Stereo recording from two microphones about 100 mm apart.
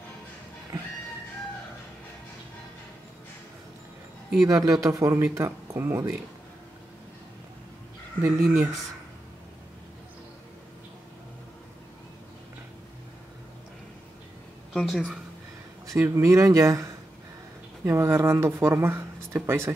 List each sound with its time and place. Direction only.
4.5 s speech: 35° right (ahead or behind)
8.2 s speech: 25° right (ahead or behind)
14.7 s a woman's voice: 5° left (ahead or behind)
15.9 s speech: 30° right (ahead or behind)